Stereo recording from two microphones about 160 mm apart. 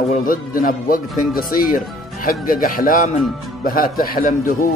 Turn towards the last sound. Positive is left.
turn(degrees=60)  # may be behind; listen again after turning